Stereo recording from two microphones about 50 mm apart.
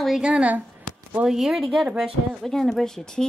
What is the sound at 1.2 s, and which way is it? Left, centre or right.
Speech, centre.